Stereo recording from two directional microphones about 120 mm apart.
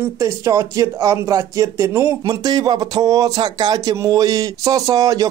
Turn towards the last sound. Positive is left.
turn(degrees=-30)  # may be behind; listen again after turning